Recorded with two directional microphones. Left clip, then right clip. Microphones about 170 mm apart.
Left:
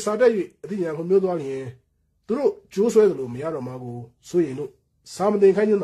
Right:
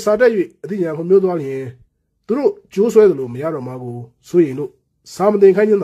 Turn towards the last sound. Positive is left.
turn(degrees=-20)  # may be behind; listen again after turning